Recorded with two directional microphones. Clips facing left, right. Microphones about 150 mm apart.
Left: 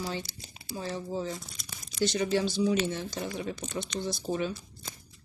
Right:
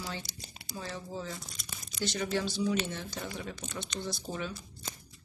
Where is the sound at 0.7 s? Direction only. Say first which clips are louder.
Left 6 dB; 25° left (ahead or behind).